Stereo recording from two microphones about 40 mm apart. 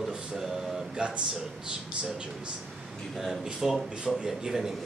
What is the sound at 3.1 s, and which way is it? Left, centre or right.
Speech, centre.